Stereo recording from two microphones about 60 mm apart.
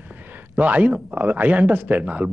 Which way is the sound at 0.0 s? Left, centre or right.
Right.